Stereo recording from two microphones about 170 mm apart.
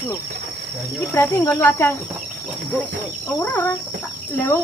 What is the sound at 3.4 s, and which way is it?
Speech, 10° left (ahead or behind).